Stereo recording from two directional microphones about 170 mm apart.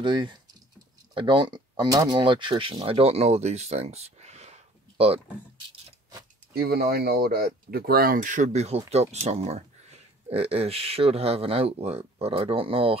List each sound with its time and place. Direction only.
0.0 s speech: 25° right (ahead or behind)
6.5 s speech: 65° right (ahead or behind); by 12.9 s 30° right (ahead or behind)